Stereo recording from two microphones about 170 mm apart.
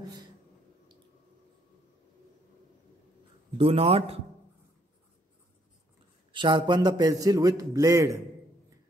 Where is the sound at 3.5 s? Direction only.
35° right (ahead or behind).